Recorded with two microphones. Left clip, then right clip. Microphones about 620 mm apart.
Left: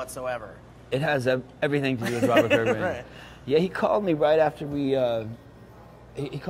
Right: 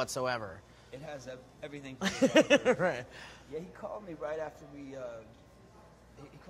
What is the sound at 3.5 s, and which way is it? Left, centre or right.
Speech, left.